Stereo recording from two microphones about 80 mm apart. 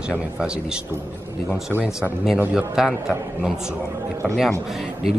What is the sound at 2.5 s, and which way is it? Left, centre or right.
Speech, centre.